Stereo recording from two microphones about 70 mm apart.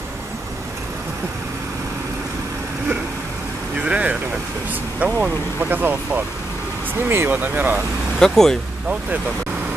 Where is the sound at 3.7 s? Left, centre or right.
Centre.